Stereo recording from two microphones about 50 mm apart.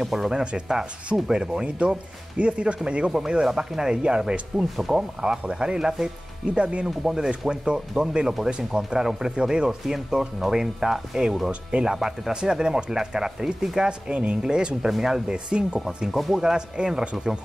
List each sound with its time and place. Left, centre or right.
0.0 s speech: centre
15.3 s speech: centre
16.2 s speech: centre; by 17.3 s right